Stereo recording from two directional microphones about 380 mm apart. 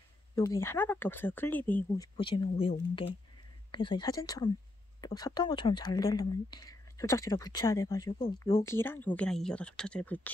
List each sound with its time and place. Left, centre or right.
0.4 s speech: centre
3.7 s speech: centre